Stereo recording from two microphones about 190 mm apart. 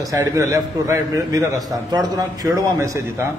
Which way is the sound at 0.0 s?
15° right (ahead or behind).